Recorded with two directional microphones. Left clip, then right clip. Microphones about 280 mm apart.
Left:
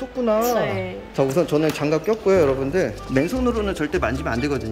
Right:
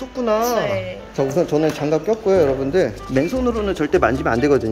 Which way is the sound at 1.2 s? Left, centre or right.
Centre.